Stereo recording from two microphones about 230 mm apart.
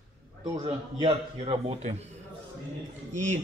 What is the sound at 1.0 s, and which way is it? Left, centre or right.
A man's voice, right.